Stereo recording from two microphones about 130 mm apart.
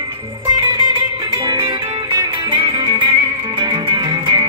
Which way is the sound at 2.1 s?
30° right (ahead or behind).